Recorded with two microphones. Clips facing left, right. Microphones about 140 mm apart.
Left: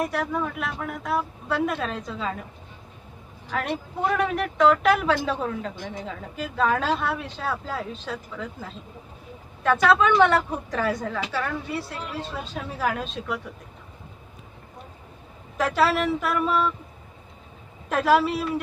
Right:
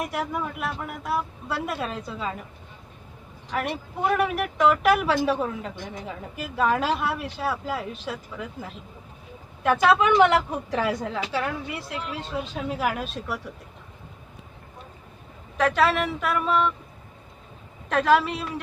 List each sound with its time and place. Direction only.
0.0 s a woman's voice: 10° right (ahead or behind)
4.2 s a woman's voice: 5° right (ahead or behind)
9.6 s a woman's voice: 15° right (ahead or behind)
15.5 s speech: centre (ahead or behind)
17.8 s speech: 5° left (ahead or behind)